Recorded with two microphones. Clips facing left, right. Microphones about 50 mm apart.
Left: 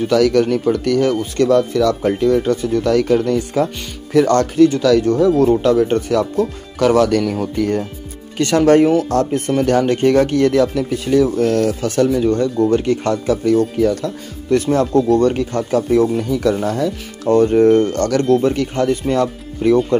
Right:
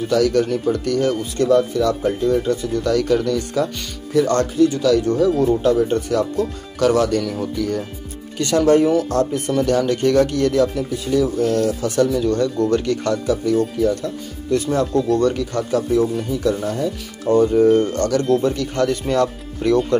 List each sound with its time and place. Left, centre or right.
0.0 s speech: left
1.7 s speech: left
2.1 s speech: left
4.1 s speech: left
5.2 s speech: left
5.6 s speech: left
10.7 s speech: left
12.1 s speech: left
14.5 s speech: left
18.8 s speech: centre